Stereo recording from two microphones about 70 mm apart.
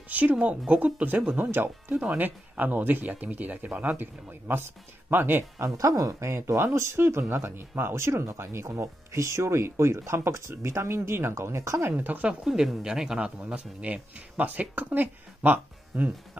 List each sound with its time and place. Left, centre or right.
0.1 s speech: right
5.8 s speech: right
11.9 s speech: right
12.4 s speech: centre; by 16.1 s right